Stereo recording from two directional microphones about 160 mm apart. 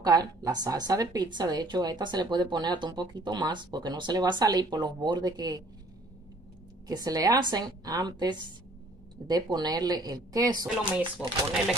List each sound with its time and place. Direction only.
0.0 s a woman's voice: 25° right (ahead or behind)
6.9 s a woman's voice: 25° right (ahead or behind)
10.9 s speech: 5° right (ahead or behind)